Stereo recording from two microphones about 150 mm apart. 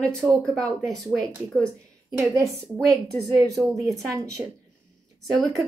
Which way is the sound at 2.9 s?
20° right (ahead or behind).